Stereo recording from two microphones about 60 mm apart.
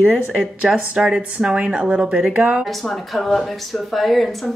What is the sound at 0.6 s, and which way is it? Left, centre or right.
A woman's voice, centre.